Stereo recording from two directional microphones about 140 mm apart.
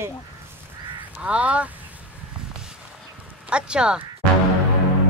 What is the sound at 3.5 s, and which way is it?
Speech, 5° right (ahead or behind).